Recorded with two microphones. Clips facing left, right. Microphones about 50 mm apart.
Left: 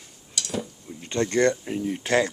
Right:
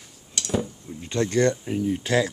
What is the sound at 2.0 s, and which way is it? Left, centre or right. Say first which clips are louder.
Speech: left 2 dB; left.